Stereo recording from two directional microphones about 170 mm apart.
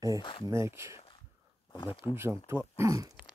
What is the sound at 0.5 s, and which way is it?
Speech, 15° right (ahead or behind).